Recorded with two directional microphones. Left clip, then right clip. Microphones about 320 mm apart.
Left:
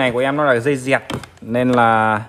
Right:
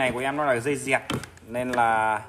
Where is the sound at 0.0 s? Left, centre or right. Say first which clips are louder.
Left 8 dB; left.